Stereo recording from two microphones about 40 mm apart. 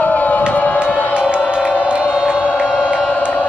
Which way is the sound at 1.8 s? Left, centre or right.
Right.